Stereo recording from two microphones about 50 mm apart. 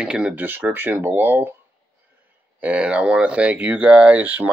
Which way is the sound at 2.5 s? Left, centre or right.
Right.